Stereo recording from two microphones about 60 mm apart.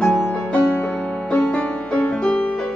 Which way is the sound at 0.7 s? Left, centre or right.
Left.